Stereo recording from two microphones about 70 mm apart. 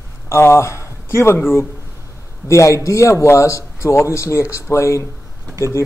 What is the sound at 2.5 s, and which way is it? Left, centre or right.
A man's voice, left.